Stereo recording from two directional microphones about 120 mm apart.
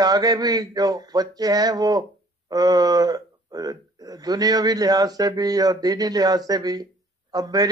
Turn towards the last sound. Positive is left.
turn(degrees=-30)  # may be behind; listen again after turning